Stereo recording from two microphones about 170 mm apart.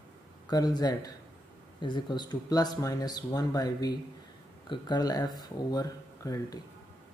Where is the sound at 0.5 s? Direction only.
20° left (ahead or behind).